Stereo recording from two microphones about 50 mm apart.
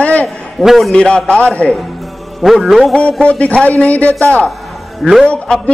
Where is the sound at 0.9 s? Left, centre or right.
Left.